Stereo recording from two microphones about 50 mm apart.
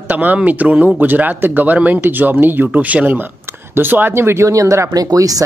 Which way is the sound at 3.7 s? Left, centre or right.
Right.